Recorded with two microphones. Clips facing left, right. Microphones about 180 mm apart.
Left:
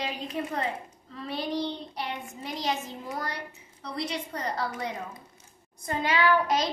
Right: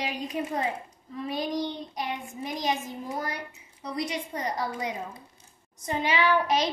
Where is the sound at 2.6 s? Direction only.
15° right (ahead or behind).